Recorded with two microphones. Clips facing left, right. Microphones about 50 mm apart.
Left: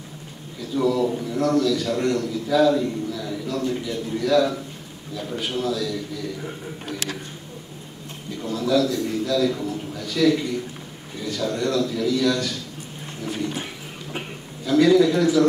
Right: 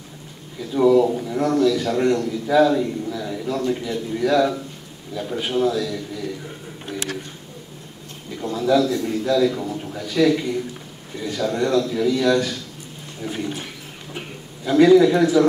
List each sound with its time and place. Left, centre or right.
0.6 s a man's voice: centre
8.4 s a man's voice: centre
13.2 s dog: centre
14.6 s a man's voice: centre